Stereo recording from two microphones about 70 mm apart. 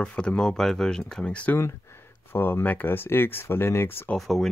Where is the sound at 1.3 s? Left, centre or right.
Centre.